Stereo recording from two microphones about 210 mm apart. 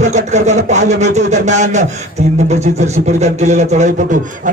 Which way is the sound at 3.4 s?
35° right (ahead or behind).